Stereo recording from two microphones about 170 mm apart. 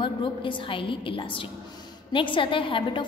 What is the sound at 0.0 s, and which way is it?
A woman's voice, 30° left (ahead or behind).